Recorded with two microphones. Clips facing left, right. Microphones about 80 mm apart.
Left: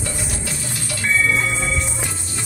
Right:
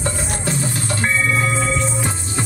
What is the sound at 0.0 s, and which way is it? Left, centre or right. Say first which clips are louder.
Music: right 5 dB; right.